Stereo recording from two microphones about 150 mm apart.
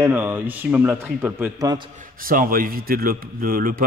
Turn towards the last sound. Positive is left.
turn(degrees=-70)  # may be behind; listen again after turning